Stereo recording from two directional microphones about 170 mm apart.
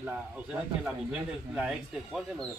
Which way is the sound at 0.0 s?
5° right (ahead or behind).